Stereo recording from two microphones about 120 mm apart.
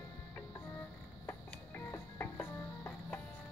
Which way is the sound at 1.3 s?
20° left (ahead or behind).